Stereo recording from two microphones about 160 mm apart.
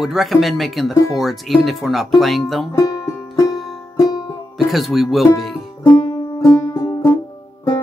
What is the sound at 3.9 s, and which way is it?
Music, 25° left (ahead or behind).